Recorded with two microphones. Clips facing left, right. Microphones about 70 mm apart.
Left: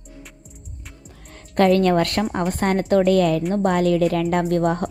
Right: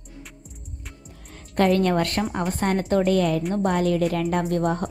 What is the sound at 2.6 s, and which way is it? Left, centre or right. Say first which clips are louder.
Speech: left 2 dB; left.